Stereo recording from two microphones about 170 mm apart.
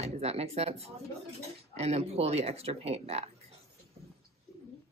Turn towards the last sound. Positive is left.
turn(degrees=-40)  # may be behind; listen again after turning